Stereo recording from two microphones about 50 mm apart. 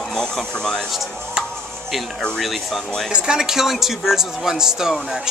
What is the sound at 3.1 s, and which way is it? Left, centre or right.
Speech, centre.